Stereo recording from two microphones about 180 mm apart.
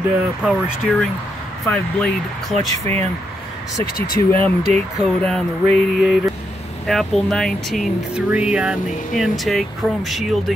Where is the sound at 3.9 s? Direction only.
55° left (ahead or behind).